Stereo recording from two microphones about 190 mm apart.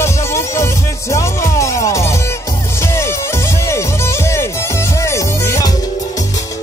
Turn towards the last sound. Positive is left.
turn(degrees=15)  # may be behind; listen again after turning